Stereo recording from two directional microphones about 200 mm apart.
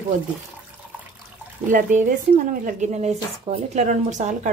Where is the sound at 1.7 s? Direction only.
40° right (ahead or behind).